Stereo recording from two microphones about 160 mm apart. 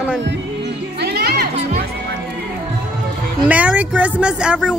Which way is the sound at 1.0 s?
85° right.